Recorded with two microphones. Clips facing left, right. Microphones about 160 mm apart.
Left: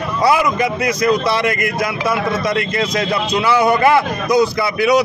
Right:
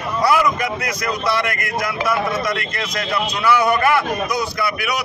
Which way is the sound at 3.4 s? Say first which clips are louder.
Left 3 dB; 25° left (ahead or behind).